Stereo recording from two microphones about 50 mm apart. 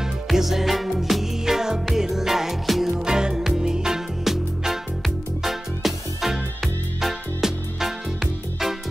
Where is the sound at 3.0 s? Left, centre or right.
Centre.